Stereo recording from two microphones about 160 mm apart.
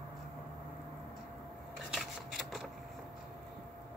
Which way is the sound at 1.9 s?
Centre (ahead or behind).